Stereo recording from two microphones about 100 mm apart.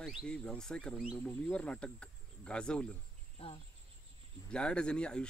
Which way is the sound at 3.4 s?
80° left.